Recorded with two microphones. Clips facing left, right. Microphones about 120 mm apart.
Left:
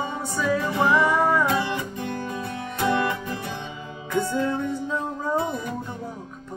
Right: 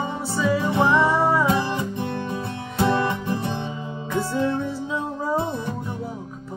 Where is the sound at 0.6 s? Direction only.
25° right (ahead or behind).